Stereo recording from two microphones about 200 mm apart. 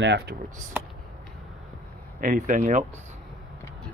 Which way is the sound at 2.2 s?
40° right (ahead or behind).